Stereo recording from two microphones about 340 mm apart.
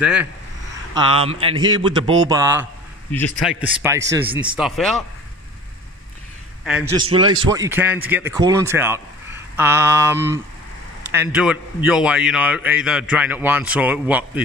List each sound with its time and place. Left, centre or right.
0.0 s a man's voice: centre
0.9 s speech: centre
3.1 s a man's voice: centre
6.6 s a man's voice: centre